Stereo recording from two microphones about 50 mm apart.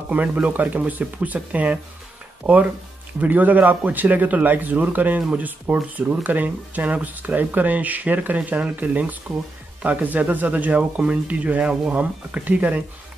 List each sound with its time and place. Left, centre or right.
0.1 s speech: right